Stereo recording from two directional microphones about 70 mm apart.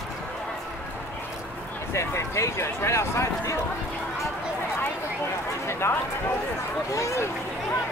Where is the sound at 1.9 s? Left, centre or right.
Left.